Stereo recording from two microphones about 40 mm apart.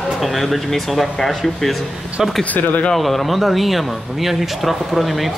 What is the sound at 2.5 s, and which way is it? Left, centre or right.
Speech, left.